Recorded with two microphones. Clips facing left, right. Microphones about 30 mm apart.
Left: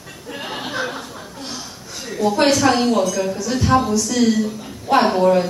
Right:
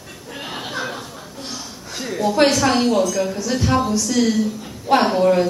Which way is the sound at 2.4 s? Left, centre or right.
Centre.